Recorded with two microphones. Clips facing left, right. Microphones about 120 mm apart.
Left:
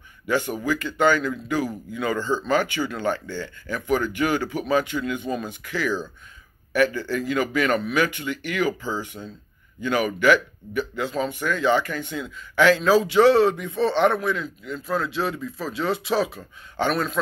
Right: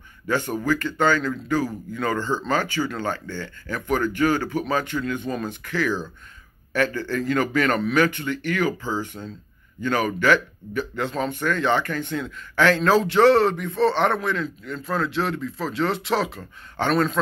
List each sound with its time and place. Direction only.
0.3 s a man's voice: 15° left (ahead or behind)
4.3 s speech: 45° right (ahead or behind)
4.6 s a man's voice: 15° left (ahead or behind)